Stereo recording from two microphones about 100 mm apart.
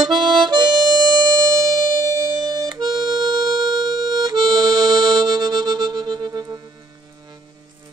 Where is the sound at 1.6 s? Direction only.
35° right (ahead or behind).